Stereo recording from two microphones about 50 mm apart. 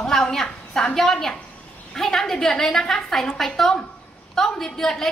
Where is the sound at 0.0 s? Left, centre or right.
Centre.